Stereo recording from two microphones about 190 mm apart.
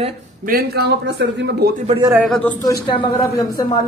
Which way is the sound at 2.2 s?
Centre (ahead or behind).